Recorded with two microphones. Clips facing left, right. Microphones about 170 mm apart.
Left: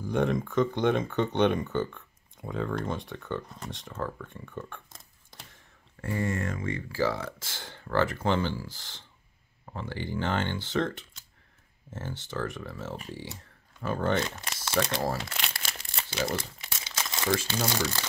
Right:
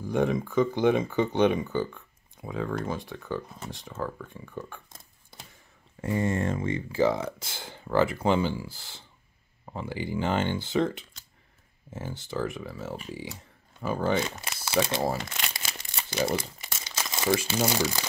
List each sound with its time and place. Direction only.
0.0 s speech: centre (ahead or behind)
5.9 s speech: 20° right (ahead or behind); by 12.9 s 5° right (ahead or behind)
13.8 s crumpling: 5° right (ahead or behind)
16.3 s speech: centre (ahead or behind)